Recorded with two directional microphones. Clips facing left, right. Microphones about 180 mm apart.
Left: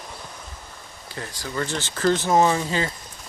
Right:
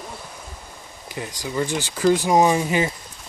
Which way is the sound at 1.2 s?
15° right (ahead or behind).